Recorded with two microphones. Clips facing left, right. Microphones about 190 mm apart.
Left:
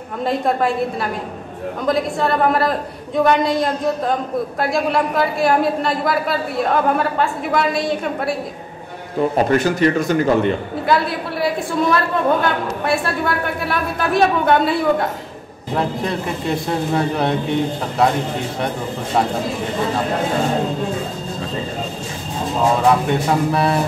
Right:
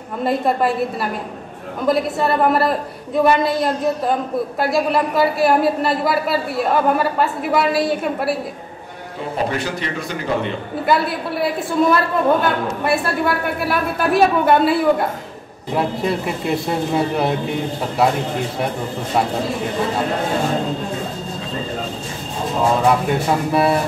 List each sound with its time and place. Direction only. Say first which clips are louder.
0.2 s a woman's voice: right 1 dB; centre (ahead or behind)
1.9 s a woman's voice: right 1 dB; 5° right (ahead or behind)
9.5 s a man's voice: left 8 dB; 45° left (ahead or behind)
10.9 s a woman's voice: even; centre (ahead or behind)
23.0 s a woman's voice: left 1 dB; 5° right (ahead or behind)